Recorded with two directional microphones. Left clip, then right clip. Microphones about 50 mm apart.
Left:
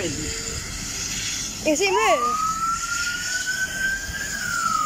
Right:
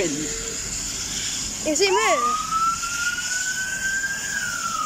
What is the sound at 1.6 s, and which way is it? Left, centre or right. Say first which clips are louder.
Speech: even; centre.